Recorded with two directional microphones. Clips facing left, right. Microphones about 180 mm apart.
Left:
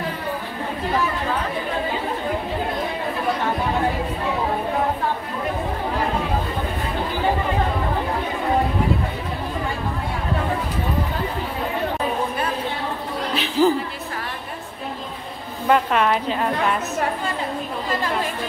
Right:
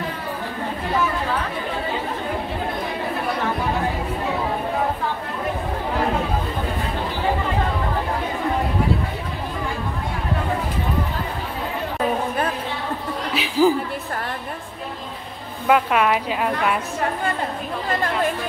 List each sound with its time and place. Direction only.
13.3 s music: 10° right (ahead or behind)
15.7 s a woman's voice: 10° right (ahead or behind)